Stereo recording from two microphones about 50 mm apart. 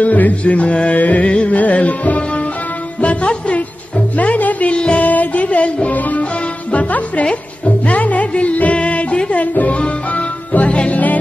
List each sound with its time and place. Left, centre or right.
0.0 s music: left